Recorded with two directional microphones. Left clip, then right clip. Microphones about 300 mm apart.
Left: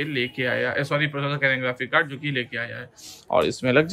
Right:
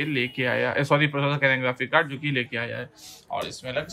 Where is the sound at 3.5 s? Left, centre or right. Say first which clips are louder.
Left 11 dB; centre.